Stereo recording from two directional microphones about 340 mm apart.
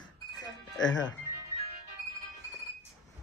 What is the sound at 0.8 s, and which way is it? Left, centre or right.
Speech, left.